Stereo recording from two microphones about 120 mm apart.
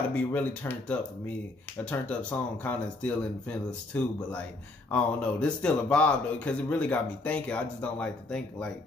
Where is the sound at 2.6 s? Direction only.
15° left (ahead or behind).